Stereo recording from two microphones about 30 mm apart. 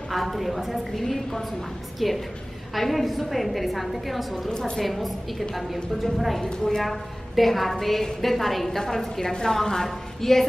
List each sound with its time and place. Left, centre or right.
0.1 s a woman's voice: centre
0.9 s a woman's voice: centre
4.5 s a woman's voice: left
4.7 s a woman's voice: centre